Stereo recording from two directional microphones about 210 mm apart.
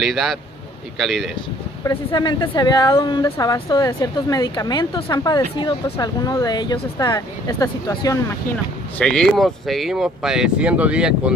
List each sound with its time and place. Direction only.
0.0 s speech: centre (ahead or behind)
1.9 s speech: 20° left (ahead or behind)
8.9 s speech: 5° left (ahead or behind)